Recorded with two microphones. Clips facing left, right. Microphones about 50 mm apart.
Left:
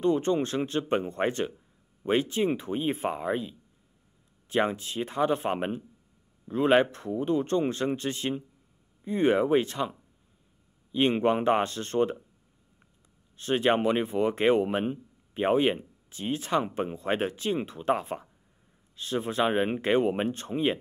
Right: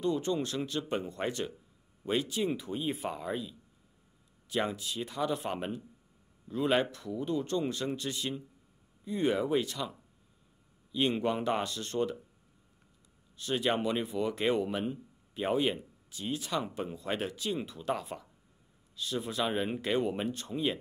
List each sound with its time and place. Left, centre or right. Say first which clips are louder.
0.0 s a man's voice: left 6 dB; left
13.4 s a man's voice: left 6 dB; left